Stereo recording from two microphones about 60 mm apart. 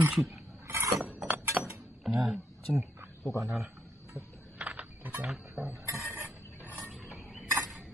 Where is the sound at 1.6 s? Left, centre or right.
Centre.